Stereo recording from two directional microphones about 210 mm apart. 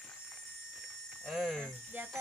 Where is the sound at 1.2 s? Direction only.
Centre (ahead or behind).